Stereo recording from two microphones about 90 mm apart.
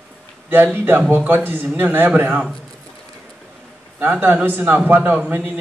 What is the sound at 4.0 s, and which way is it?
A man's voice, 20° right (ahead or behind).